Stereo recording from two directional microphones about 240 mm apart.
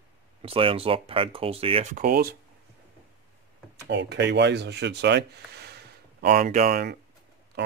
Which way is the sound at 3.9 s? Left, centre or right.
Right.